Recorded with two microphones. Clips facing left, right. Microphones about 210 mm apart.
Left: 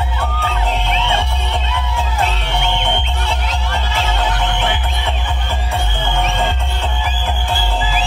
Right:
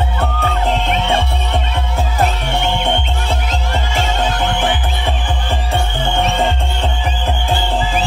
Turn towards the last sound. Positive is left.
turn(degrees=-35)  # may be behind; listen again after turning